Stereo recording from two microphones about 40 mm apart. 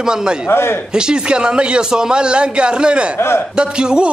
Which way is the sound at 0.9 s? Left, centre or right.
Right.